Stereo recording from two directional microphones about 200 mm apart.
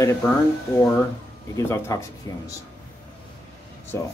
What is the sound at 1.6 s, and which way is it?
Speech, 15° left (ahead or behind).